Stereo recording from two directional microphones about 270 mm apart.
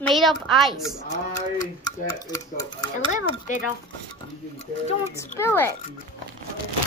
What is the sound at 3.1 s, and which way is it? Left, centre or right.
Speech, left.